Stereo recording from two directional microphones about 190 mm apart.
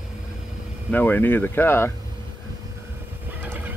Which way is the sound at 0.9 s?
10° left (ahead or behind).